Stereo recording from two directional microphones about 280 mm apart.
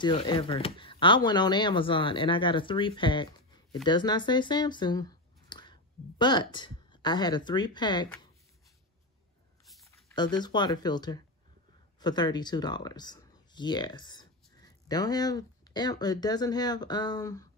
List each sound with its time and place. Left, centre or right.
0.0 s speech: centre
10.1 s speech: centre